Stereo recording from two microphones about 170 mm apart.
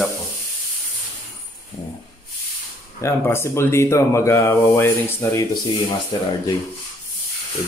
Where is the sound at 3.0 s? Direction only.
15° left (ahead or behind).